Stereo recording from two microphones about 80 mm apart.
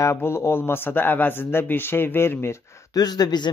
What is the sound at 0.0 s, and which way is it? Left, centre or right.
A man's voice, left.